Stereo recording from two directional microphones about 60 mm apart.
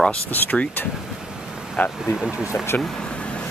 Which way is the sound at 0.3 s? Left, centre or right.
Left.